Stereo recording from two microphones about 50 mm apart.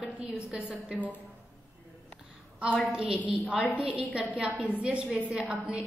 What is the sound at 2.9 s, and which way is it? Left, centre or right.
A woman's voice, right.